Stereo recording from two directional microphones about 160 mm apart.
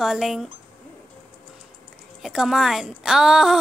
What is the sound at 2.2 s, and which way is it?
Speech, centre (ahead or behind).